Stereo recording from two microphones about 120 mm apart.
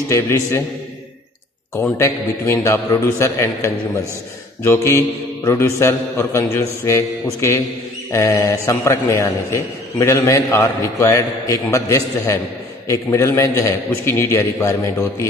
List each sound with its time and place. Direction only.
0.1 s a man's voice: 25° left (ahead or behind)
1.8 s a man's voice: 20° left (ahead or behind)